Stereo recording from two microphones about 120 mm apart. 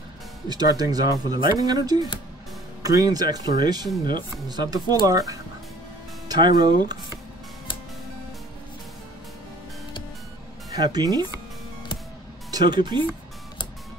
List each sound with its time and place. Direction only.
0.5 s speech: 35° right (ahead or behind)
10.7 s speech: 35° right (ahead or behind)
12.4 s speech: 35° right (ahead or behind)